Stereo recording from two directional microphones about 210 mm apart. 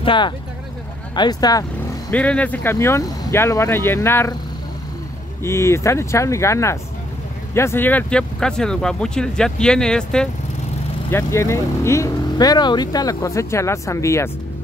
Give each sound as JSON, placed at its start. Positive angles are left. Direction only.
{"t": 0.0, "sound": "speech", "side_deg": 25}
{"t": 5.4, "sound": "speech", "side_deg": 15}